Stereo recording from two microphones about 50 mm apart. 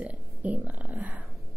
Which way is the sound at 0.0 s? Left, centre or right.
Right.